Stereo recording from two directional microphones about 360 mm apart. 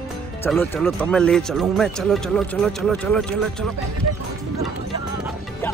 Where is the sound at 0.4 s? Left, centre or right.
Centre.